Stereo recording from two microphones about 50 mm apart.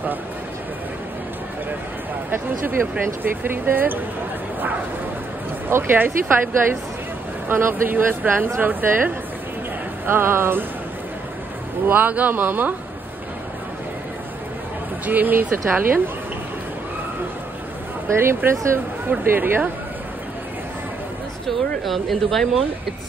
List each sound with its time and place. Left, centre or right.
2.3 s speech: right
5.7 s speech: right
11.9 s speech: right
15.0 s speech: right
18.0 s speech: right
19.0 s speech: right
21.5 s speech: centre